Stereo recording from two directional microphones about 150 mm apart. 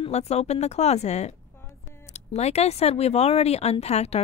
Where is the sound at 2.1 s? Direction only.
45° left (ahead or behind).